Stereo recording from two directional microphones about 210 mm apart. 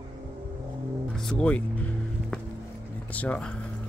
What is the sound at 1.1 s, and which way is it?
Music, 5° left (ahead or behind).